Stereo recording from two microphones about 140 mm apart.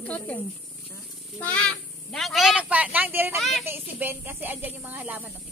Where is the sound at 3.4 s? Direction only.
Centre (ahead or behind).